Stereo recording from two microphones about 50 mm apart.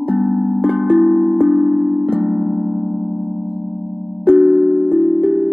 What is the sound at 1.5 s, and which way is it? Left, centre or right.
Music, centre.